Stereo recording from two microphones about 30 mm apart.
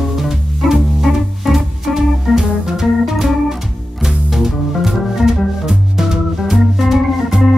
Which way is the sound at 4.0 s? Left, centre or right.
Centre.